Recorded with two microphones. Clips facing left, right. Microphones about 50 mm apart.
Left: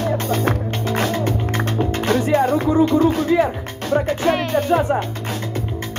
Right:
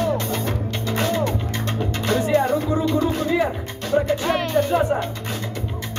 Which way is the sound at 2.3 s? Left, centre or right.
Left.